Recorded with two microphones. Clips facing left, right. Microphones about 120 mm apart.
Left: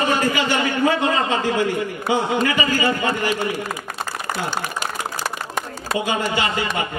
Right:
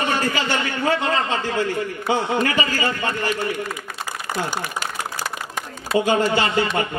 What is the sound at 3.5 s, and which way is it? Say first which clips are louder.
Speech: left 1 dB; 40° left (ahead or behind).